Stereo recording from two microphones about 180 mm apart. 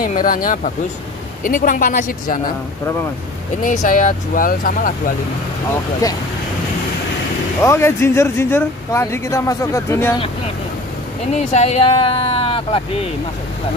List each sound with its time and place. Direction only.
0.0 s speech: 50° left (ahead or behind)
3.6 s speech: 45° left (ahead or behind)
7.6 s speech: 15° left (ahead or behind)
11.5 s speech: 40° left (ahead or behind)